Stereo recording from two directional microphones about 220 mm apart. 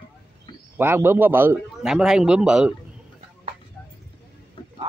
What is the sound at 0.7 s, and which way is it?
A man's voice, 10° right (ahead or behind).